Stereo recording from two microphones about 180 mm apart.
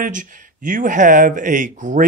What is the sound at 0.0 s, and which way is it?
Speech, 50° right (ahead or behind).